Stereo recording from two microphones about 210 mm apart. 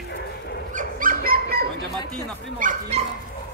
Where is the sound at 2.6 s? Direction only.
40° right (ahead or behind).